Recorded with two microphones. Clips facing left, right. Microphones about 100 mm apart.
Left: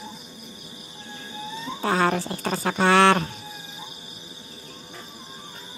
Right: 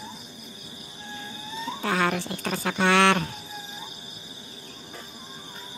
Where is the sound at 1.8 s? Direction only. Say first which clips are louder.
Left 4 dB; 35° left (ahead or behind).